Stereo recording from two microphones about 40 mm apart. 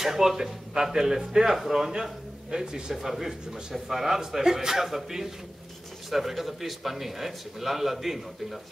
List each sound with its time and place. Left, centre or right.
0.0 s a man's voice: centre
2.9 s a man's voice: centre